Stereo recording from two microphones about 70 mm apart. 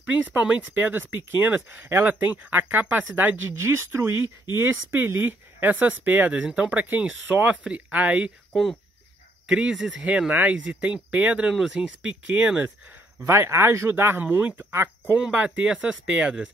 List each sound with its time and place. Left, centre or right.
0.0 s speech: right
1.8 s speech: right
3.4 s speech: right; by 8.3 s centre
9.5 s speech: centre
11.4 s speech: centre
12.0 s speech: centre
13.2 s speech: right
14.2 s speech: right
14.6 s speech: right
15.1 s speech: centre